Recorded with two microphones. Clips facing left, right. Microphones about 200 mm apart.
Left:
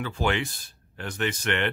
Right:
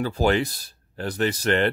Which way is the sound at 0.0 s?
40° right (ahead or behind).